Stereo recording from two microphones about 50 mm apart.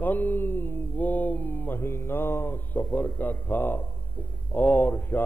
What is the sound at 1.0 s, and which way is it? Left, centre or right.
Speech, left.